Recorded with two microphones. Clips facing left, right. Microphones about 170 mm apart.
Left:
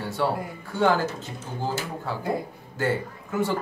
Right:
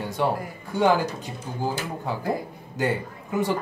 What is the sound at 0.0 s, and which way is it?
Music, 15° right (ahead or behind).